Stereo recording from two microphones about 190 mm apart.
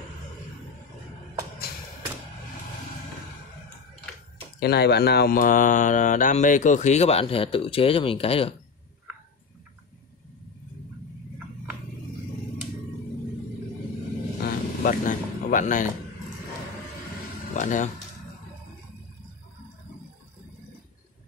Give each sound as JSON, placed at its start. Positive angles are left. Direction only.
{"t": 4.6, "sound": "speech", "side_deg": 60}
{"t": 14.4, "sound": "vehicle", "side_deg": 50}
{"t": 17.6, "sound": "speech", "side_deg": 45}